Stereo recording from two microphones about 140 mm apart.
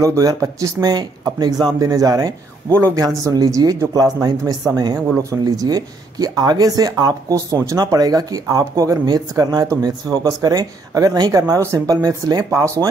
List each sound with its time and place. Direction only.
0.0 s speech: 25° right (ahead or behind)